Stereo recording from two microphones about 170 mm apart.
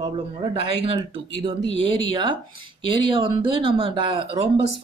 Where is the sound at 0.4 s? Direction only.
35° right (ahead or behind).